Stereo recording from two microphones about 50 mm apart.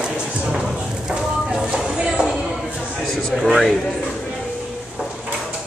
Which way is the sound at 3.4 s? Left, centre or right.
Centre.